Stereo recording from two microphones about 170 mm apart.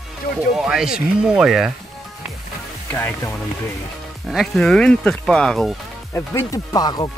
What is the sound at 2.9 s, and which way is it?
Speech, 15° left (ahead or behind).